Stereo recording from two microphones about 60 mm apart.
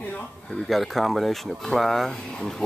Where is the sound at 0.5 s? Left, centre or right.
Centre.